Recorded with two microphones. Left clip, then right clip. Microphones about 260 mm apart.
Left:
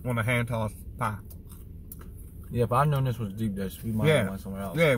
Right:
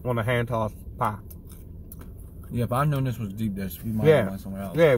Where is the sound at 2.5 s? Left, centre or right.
Centre.